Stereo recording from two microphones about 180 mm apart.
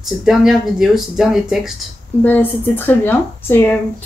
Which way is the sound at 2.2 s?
10° left (ahead or behind).